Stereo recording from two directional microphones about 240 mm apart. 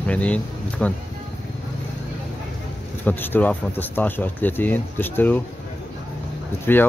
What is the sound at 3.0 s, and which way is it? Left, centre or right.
Speech, centre.